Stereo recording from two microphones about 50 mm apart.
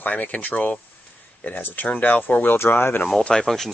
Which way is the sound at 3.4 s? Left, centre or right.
Centre.